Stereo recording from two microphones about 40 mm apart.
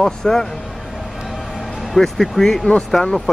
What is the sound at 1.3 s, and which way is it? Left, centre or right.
Music, centre.